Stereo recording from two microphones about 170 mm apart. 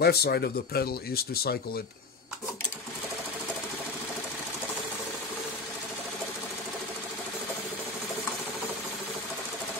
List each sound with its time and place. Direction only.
0.0 s speech: 70° left (ahead or behind)